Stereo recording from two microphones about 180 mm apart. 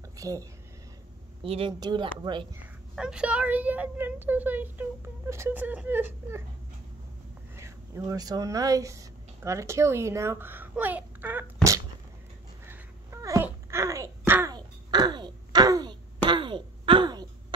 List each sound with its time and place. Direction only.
0.1 s speech: 20° right (ahead or behind)
1.4 s speech: 30° right (ahead or behind)
2.6 s a woman's voice: 5° right (ahead or behind)
7.5 s speech: 15° right (ahead or behind)
12.6 s a sound: 15° right (ahead or behind)